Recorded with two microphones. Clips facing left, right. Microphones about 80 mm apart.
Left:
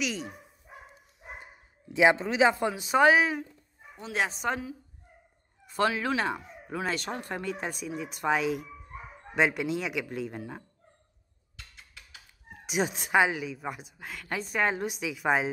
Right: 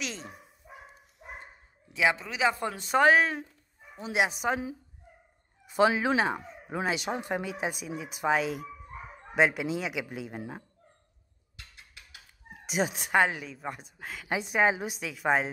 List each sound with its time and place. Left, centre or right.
0.0 s a woman's voice: centre
2.0 s a man's voice: left
2.7 s a woman's voice: centre
4.0 s speech: centre
5.8 s speech: centre
6.9 s a woman's voice: centre
12.6 s a woman's voice: centre
14.2 s a woman's voice: centre